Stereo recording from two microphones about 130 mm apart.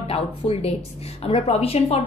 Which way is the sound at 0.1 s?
50° left (ahead or behind).